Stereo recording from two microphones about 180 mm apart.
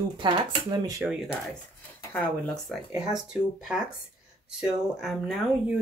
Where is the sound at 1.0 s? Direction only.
5° right (ahead or behind).